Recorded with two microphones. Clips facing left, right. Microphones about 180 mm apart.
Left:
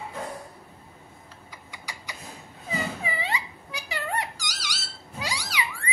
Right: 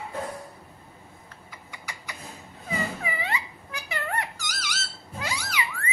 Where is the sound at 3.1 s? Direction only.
15° left (ahead or behind).